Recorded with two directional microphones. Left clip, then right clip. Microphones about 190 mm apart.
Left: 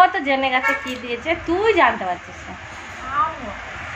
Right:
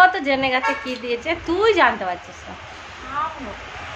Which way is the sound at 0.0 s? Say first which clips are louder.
Even; 10° right (ahead or behind).